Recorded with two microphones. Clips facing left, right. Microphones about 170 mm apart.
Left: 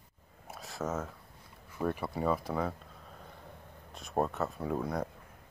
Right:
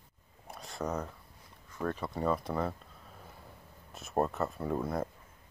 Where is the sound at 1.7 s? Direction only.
10° left (ahead or behind).